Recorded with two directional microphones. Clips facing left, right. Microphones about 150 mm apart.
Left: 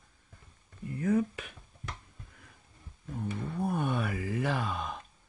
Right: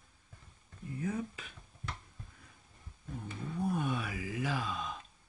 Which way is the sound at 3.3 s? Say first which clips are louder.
Left 2 dB; 60° left (ahead or behind).